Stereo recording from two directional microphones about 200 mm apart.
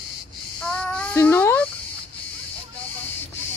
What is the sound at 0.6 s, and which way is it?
Child singing, 5° left (ahead or behind).